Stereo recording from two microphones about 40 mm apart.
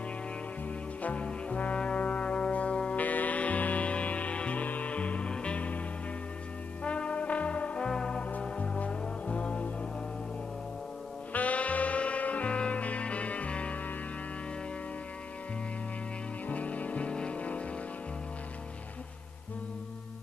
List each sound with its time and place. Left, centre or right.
1.0 s brass instrument: left
3.0 s music: left
6.8 s music: left
7.9 s music: centre
8.4 s music: left
11.3 s music: left
16.4 s music: left